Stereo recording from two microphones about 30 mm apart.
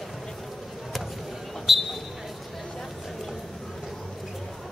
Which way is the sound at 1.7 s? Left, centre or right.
Centre.